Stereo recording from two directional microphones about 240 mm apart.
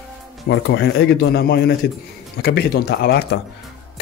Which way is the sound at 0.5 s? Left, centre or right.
Left.